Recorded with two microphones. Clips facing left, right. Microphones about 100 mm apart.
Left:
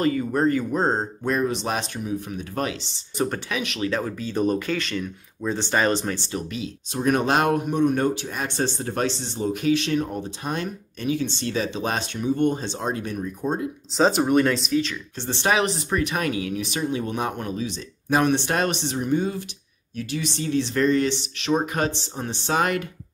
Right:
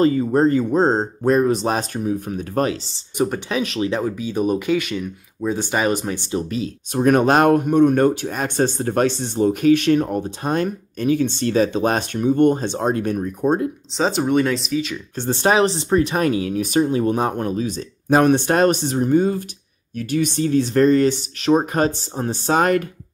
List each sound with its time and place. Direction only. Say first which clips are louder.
0.0 s speech: right 5 dB; 30° right (ahead or behind)
3.8 s speech: right 4 dB; 15° right (ahead or behind)
6.9 s speech: right 6 dB; 50° right (ahead or behind)
13.9 s speech: even; centre (ahead or behind)
15.1 s speech: right 5 dB; 45° right (ahead or behind)